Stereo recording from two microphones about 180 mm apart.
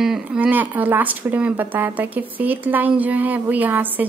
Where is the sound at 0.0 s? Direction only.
5° right (ahead or behind).